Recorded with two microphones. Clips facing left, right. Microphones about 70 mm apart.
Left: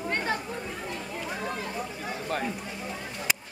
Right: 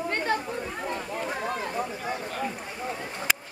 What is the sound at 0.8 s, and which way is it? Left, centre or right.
Speech, right.